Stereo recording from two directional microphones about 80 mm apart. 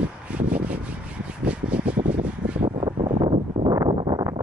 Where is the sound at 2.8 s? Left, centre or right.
Right.